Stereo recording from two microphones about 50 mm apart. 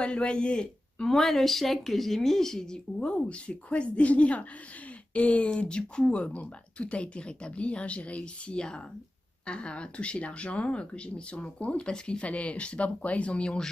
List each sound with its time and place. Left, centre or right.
0.0 s speech: left